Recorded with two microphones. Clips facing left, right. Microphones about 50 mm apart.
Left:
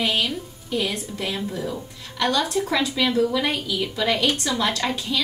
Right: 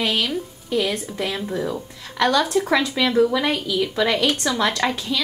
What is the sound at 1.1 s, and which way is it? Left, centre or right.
Speech, right.